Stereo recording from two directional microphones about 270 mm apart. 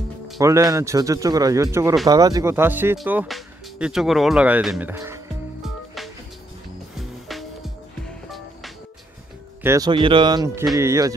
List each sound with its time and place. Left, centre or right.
0.4 s a man's voice: centre
7.0 s music: centre
9.6 s a man's voice: centre
10.6 s speech: centre
10.9 s a man's voice: centre